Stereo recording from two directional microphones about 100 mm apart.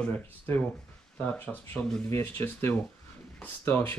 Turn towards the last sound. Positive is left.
turn(degrees=20)  # may be behind; listen again after turning